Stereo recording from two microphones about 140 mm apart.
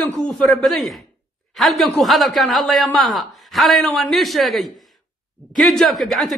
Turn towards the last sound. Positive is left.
turn(degrees=0)  # may be behind; listen again after turning